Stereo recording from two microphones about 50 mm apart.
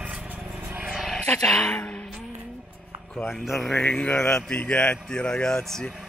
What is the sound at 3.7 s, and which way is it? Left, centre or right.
Speech, left.